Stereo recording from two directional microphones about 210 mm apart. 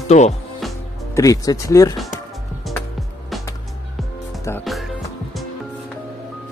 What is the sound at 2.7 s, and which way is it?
Music, centre (ahead or behind).